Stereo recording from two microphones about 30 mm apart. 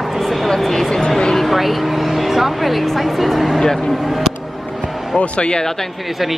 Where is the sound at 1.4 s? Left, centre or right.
Centre.